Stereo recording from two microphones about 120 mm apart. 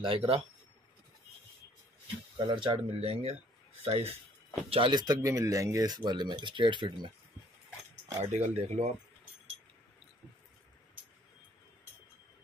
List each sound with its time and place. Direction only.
0.0 s speech: 50° right (ahead or behind)
2.3 s speech: 40° right (ahead or behind)
5.0 s speech: 25° right (ahead or behind); by 7.1 s 40° right (ahead or behind)
8.2 s speech: 65° right (ahead or behind)